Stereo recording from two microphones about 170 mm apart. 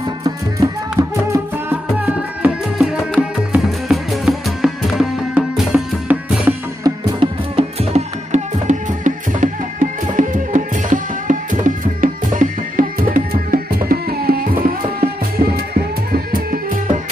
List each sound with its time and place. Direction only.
0.2 s music: 20° right (ahead or behind)
2.0 s music: 5° right (ahead or behind)
6.8 s music: 30° right (ahead or behind); by 15.0 s 60° right (ahead or behind)